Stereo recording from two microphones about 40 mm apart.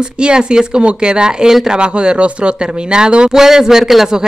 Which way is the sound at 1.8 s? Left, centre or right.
Right.